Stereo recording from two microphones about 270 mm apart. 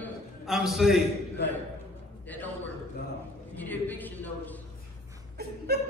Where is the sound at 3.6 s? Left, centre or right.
Centre.